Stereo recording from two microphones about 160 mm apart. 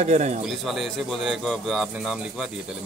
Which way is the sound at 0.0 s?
45° right (ahead or behind).